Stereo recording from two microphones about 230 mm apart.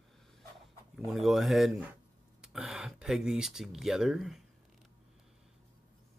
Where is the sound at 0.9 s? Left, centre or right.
Centre.